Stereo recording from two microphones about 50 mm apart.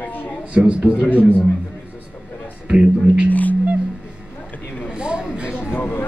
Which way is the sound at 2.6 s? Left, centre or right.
Right.